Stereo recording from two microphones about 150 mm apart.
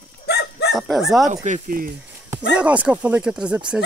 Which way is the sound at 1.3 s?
55° right (ahead or behind).